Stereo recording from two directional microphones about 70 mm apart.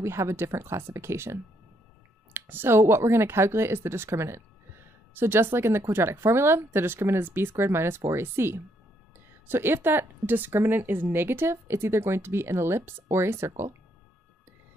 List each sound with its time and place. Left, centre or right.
0.0 s speech: right